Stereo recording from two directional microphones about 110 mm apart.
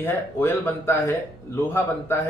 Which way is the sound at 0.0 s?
20° left (ahead or behind).